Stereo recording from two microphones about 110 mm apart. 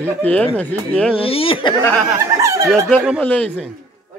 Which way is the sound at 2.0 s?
30° right (ahead or behind).